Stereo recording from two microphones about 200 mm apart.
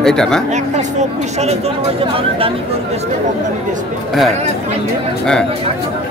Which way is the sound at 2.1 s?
30° right (ahead or behind).